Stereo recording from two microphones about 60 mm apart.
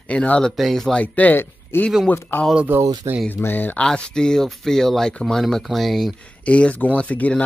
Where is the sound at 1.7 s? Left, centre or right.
Left.